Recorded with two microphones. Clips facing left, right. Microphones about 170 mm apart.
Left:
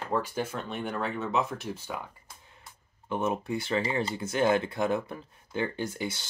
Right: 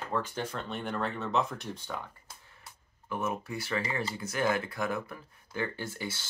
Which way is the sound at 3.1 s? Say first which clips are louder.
Left 5 dB; 25° left (ahead or behind).